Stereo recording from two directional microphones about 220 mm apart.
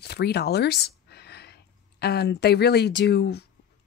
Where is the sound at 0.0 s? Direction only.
50° left (ahead or behind).